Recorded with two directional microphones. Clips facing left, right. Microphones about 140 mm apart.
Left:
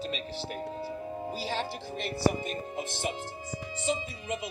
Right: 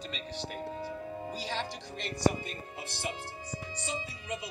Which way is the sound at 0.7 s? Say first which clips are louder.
Left 2 dB; 25° left (ahead or behind).